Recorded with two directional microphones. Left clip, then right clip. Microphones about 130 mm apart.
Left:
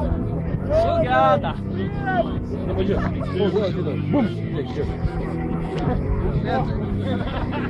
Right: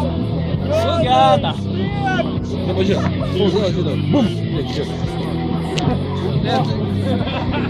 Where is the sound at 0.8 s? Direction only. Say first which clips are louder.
Right 4 dB; 40° right (ahead or behind).